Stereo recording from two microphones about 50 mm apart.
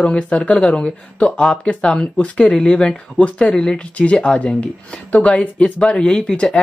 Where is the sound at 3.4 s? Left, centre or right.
Centre.